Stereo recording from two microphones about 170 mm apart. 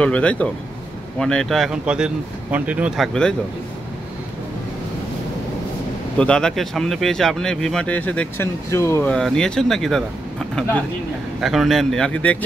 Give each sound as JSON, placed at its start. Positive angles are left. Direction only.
{"t": 0.0, "sound": "speech", "side_deg": 10}
{"t": 3.1, "sound": "speech", "side_deg": 5}
{"t": 6.1, "sound": "speech", "side_deg": 5}
{"t": 9.1, "sound": "speech", "side_deg": 5}